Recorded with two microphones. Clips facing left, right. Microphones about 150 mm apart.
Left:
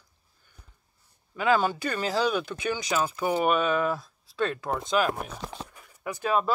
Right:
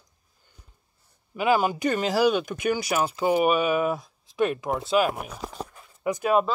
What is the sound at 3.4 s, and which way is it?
Speech, 10° right (ahead or behind).